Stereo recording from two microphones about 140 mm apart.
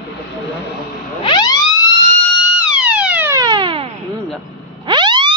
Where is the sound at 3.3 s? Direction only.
30° right (ahead or behind).